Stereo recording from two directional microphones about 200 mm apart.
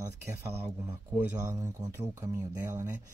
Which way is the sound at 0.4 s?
15° right (ahead or behind).